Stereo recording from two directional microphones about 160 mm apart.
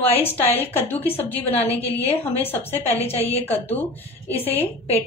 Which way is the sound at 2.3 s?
10° left (ahead or behind).